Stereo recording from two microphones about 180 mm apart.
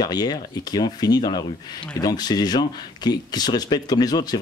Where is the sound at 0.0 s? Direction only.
25° left (ahead or behind).